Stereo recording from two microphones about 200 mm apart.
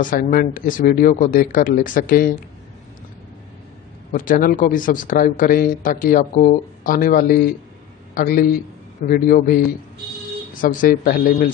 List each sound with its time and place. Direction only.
0.0 s a man's voice: 45° left (ahead or behind)
4.1 s a man's voice: 45° left (ahead or behind)